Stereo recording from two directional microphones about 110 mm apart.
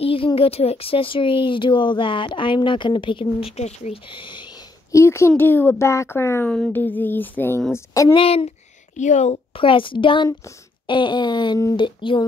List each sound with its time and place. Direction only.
0.0 s speech: 55° left (ahead or behind); by 4.0 s 80° left
4.1 s speech: 45° left (ahead or behind)
4.9 s speech: 25° left (ahead or behind)
7.7 s speech: 30° left (ahead or behind)
8.1 s speech: 55° left (ahead or behind)
8.9 s speech: 90° left; by 12.3 s 45° left (ahead or behind)